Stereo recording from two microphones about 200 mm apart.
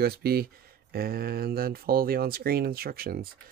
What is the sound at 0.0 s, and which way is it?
Speech, 50° right (ahead or behind).